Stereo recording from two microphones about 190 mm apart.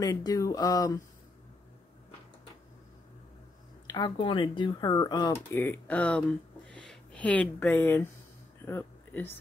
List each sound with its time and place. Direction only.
0.0 s speech: 20° left (ahead or behind)
3.8 s speech: 20° left (ahead or behind); by 6.2 s 5° left (ahead or behind)
6.7 s a sound: 5° left (ahead or behind)